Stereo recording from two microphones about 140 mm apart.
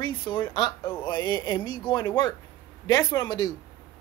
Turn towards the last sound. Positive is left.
turn(degrees=30)  # may be behind; listen again after turning